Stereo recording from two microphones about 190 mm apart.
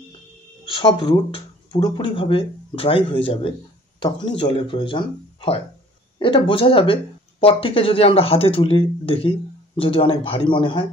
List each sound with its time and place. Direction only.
0.7 s speech: 25° left (ahead or behind)